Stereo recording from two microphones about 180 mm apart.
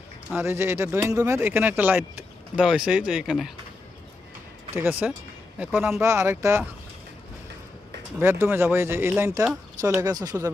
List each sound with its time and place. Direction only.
0.3 s speech: 15° right (ahead or behind)
4.7 s speech: 10° right (ahead or behind)
8.2 s speech: 15° right (ahead or behind)